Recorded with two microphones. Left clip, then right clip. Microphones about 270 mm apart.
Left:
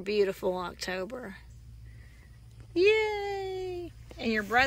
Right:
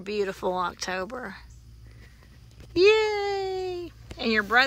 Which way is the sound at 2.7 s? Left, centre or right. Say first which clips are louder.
Right 5 dB; centre.